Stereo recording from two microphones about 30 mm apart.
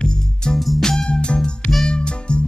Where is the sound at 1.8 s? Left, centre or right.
Left.